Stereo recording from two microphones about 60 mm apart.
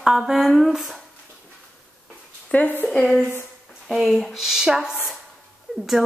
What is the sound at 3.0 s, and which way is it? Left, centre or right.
Speech, centre.